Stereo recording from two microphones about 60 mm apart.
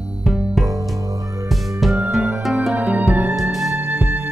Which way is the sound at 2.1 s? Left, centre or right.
Centre.